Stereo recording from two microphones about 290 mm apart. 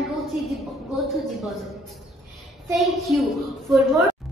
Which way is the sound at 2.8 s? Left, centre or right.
Centre.